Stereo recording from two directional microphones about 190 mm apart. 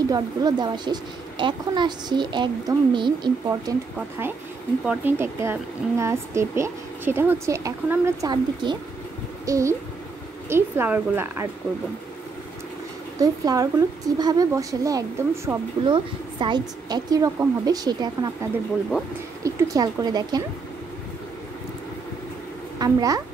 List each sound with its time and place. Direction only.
0.1 s a woman's voice: 20° right (ahead or behind)
4.8 s speech: 10° right (ahead or behind)
13.2 s a woman's voice: 20° right (ahead or behind)
22.8 s speech: 20° right (ahead or behind)